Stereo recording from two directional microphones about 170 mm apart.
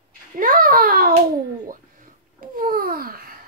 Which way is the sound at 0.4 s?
55° right (ahead or behind).